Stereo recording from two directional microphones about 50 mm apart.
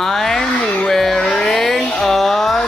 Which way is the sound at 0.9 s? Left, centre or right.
Centre.